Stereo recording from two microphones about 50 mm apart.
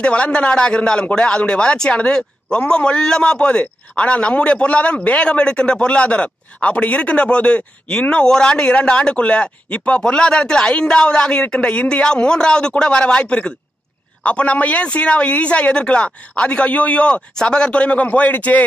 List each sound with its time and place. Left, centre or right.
0.0 s a man's voice: left